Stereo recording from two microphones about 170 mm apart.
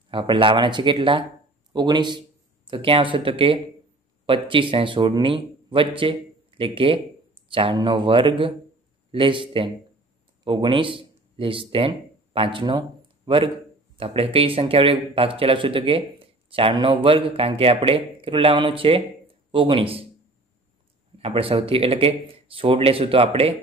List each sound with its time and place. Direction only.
0.1 s a man's voice: 30° right (ahead or behind)
21.2 s speech: 35° right (ahead or behind)